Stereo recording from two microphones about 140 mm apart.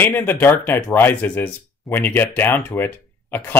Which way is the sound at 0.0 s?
15° left (ahead or behind).